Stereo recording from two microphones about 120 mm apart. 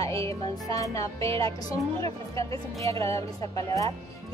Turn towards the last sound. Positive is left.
turn(degrees=30)  # may be behind; listen again after turning